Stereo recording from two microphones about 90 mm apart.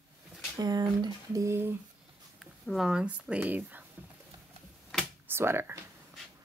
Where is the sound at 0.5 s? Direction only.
50° right (ahead or behind).